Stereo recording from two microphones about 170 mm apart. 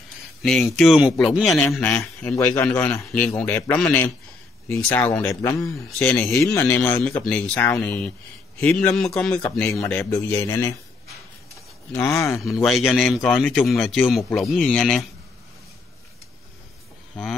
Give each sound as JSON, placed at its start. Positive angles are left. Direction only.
{"t": 0.4, "sound": "a man's voice", "side_deg": 0}
{"t": 2.8, "sound": "a man's voice", "side_deg": 5}
{"t": 11.9, "sound": "a man's voice", "side_deg": 15}
{"t": 12.6, "sound": "a man's voice", "side_deg": 0}